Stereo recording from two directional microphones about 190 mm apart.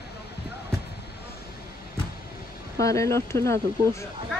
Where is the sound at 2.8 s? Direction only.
15° left (ahead or behind).